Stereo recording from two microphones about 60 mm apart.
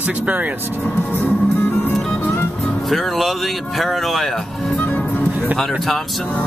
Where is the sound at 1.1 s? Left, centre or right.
Left.